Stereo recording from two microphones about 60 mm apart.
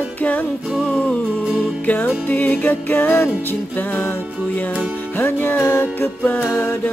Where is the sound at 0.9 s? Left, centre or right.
Centre.